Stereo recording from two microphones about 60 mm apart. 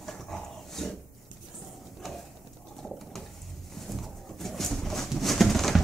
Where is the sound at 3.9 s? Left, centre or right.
Centre.